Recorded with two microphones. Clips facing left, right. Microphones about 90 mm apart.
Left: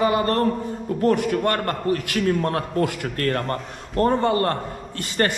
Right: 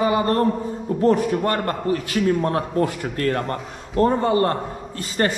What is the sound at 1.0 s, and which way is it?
Speech, 30° right (ahead or behind).